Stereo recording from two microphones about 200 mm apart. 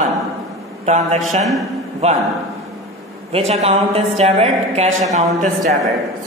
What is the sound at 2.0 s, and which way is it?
Speech, 30° right (ahead or behind).